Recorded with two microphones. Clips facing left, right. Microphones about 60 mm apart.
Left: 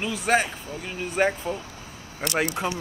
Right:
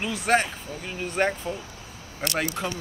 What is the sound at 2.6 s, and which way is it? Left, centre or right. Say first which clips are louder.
Speech: left 3 dB; centre.